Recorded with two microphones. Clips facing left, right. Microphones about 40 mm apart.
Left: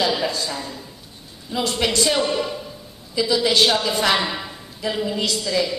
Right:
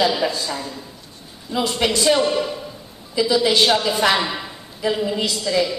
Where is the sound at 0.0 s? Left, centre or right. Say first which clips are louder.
Right 2 dB; centre.